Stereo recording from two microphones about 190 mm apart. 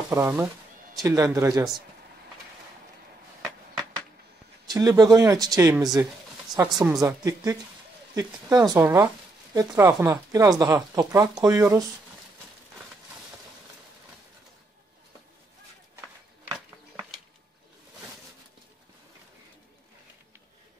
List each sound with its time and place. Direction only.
0.1 s speech: 15° right (ahead or behind)
4.6 s speech: 20° right (ahead or behind)